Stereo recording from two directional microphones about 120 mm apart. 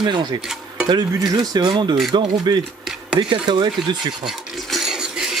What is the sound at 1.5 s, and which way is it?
Speech, 40° right (ahead or behind).